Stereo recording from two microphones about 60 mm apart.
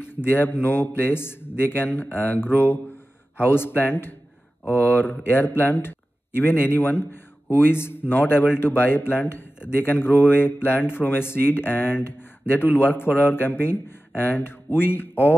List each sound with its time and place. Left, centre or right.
0.0 s a man's voice: left